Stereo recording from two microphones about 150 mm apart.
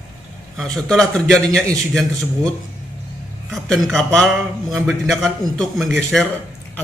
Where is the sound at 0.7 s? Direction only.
Centre (ahead or behind).